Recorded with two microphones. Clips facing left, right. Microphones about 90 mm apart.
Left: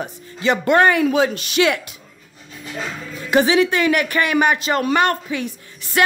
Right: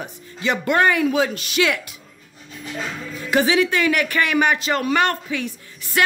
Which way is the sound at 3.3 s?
25° left (ahead or behind).